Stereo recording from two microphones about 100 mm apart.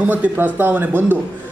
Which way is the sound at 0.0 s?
15° right (ahead or behind).